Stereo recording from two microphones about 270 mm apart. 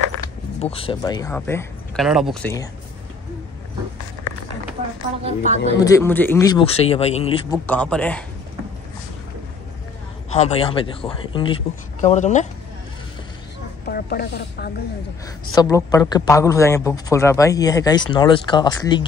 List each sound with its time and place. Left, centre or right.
0.6 s speech: left
5.2 s a woman's voice: right
5.8 s speech: centre
7.6 s speech: centre
10.3 s speech: left
13.8 s a woman's voice: left
15.5 s speech: centre